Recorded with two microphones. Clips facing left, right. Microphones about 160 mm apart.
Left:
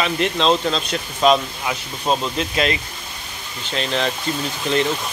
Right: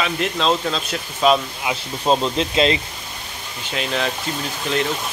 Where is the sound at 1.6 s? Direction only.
20° right (ahead or behind).